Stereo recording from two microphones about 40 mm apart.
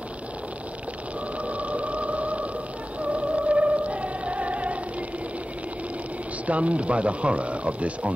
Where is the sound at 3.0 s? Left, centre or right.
Right.